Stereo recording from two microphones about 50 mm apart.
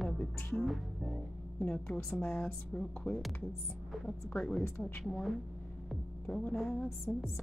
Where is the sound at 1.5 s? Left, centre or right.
Left.